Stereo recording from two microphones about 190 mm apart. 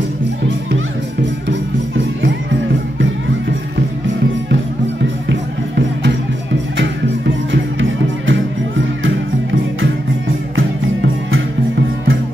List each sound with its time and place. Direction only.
5.3 s music: 70° right (ahead or behind)
8.3 s music: 85° right